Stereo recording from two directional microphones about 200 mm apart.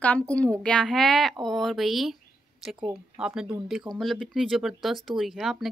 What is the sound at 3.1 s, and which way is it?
Speech, 5° right (ahead or behind).